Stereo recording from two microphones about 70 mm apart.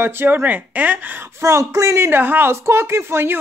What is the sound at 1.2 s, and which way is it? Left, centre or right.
Speech, right.